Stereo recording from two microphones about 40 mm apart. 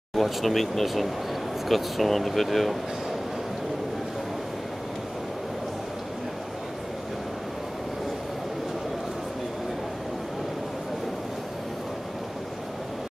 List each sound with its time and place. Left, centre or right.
0.2 s speech: centre